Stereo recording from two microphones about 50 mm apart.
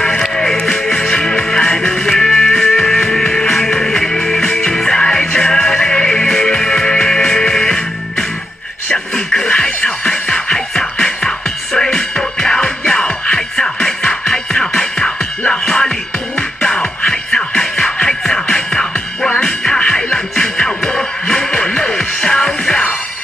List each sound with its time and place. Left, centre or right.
0.0 s music: centre
8.9 s a sound: centre
10.2 s music: centre
15.0 s music: left
15.6 s music: centre
16.3 s music: left
18.9 s music: left
19.4 s music: centre
19.8 s music: left